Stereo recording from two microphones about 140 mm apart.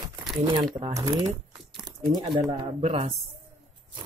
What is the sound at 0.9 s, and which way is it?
Speech, 30° right (ahead or behind).